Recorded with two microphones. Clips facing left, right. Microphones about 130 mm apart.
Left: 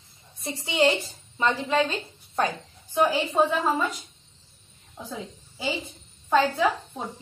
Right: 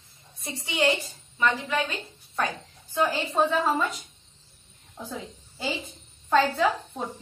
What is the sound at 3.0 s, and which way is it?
Speech, 15° left (ahead or behind).